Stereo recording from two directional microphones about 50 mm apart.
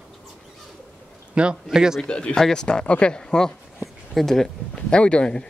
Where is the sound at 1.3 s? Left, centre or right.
Right.